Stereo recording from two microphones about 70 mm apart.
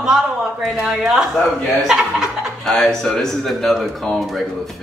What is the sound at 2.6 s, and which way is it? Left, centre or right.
Speech, centre.